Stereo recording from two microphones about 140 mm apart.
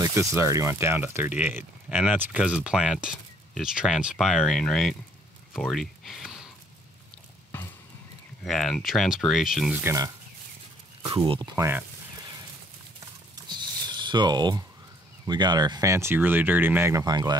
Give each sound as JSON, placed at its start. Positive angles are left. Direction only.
{"t": 0.0, "sound": "speech", "side_deg": -20}
{"t": 5.5, "sound": "a sound", "side_deg": 0}
{"t": 7.5, "sound": "a sound", "side_deg": 15}
{"t": 8.5, "sound": "speech", "side_deg": 0}
{"t": 9.8, "sound": "speech", "side_deg": -25}
{"t": 11.1, "sound": "speech", "side_deg": -35}
{"t": 11.5, "sound": "speech", "side_deg": -20}
{"t": 13.5, "sound": "a sound", "side_deg": -30}
{"t": 15.2, "sound": "speech", "side_deg": -30}
{"t": 17.0, "sound": "speech", "side_deg": -30}